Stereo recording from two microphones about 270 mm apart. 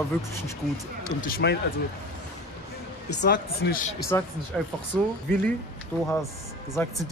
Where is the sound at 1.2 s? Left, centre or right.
Left.